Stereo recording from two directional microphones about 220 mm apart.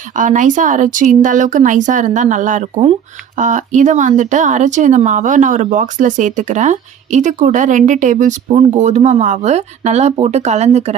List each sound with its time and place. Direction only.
0.1 s speech: 35° right (ahead or behind)